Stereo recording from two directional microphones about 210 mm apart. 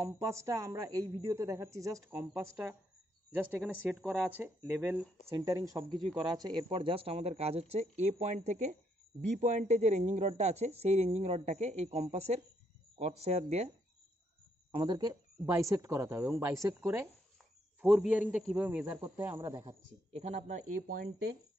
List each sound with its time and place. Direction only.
0.0 s a woman's voice: 15° right (ahead or behind); by 13.7 s 30° right (ahead or behind)
14.7 s a woman's voice: 25° right (ahead or behind); by 21.4 s 45° right (ahead or behind)